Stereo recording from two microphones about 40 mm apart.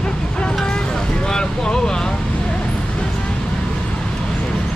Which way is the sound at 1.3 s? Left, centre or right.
Centre.